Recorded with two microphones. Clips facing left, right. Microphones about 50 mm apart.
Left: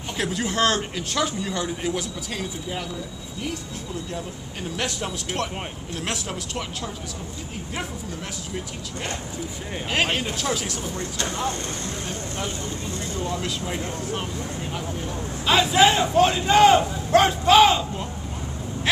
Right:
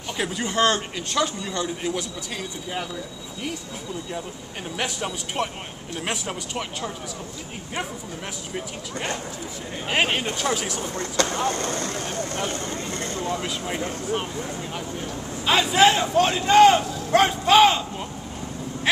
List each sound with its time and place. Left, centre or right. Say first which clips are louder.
0.2 s speech: right 1 dB; centre
4.7 s speech: right 1 dB; centre
8.5 s speech: right 3 dB; centre
11.4 s speech: right 3 dB; right
12.4 s vehicle: right 2 dB; right
13.4 s speech: right 1 dB; centre
15.4 s speech: even; centre
17.1 s a sound: left 1 dB; centre